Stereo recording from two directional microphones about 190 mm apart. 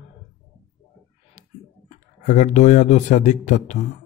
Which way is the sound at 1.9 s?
40° left (ahead or behind).